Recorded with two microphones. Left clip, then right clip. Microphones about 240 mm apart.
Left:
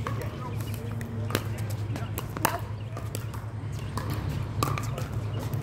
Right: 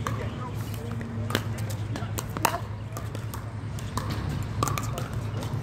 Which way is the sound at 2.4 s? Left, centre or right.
Centre.